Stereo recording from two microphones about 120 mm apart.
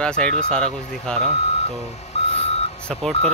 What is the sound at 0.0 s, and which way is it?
Speech, 10° left (ahead or behind).